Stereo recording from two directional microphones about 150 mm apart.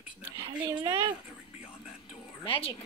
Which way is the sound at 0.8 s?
25° right (ahead or behind).